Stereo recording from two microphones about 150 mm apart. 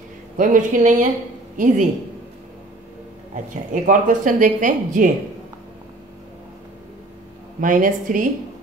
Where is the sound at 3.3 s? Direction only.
60° right (ahead or behind).